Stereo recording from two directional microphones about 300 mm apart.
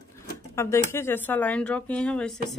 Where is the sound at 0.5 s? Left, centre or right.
Centre.